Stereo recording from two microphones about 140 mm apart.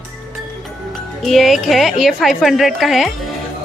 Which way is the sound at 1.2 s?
Centre (ahead or behind).